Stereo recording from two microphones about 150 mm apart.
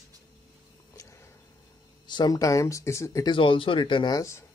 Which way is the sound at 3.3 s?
35° left (ahead or behind).